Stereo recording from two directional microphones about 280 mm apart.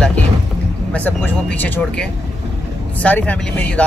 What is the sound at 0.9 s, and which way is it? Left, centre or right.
Speech, centre.